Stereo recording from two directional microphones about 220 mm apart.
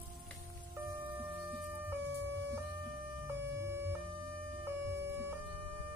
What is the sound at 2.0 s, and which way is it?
Music, 55° right (ahead or behind).